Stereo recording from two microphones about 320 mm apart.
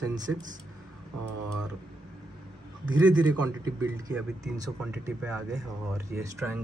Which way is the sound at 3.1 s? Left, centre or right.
Centre.